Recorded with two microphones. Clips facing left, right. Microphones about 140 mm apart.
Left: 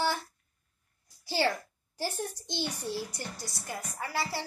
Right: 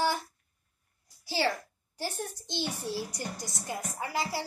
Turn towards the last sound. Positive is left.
turn(degrees=-15)  # may be behind; listen again after turning